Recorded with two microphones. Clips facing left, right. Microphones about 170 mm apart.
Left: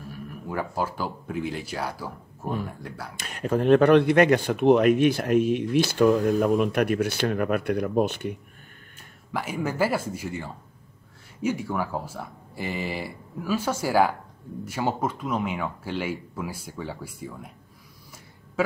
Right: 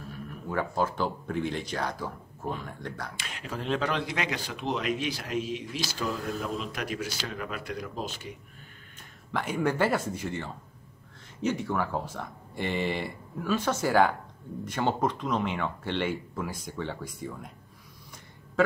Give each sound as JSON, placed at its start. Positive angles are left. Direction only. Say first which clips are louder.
{"t": 0.5, "sound": "speech", "louder": "even", "side_deg": 10}
{"t": 3.2, "sound": "speech", "louder": "left 12 dB", "side_deg": 45}
{"t": 9.3, "sound": "speech", "louder": "right 1 dB", "side_deg": 5}